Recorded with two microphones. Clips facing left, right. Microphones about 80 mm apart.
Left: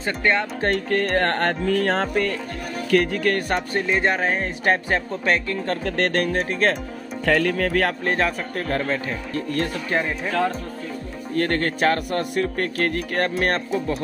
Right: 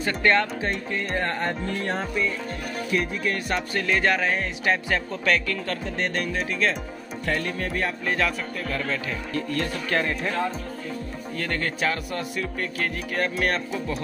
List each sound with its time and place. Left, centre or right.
0.0 s speech: centre
0.6 s music: left
2.9 s speech: left
3.8 s music: left
4.2 s speech: left
5.9 s speech: left
7.2 s music: left
8.0 s speech: left
8.5 s speech: left
8.8 s speech: left
9.8 s speech: centre
11.3 s speech: left
13.4 s speech: left